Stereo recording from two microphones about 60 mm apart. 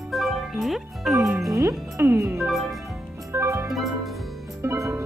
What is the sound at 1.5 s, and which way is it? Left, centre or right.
Music, right.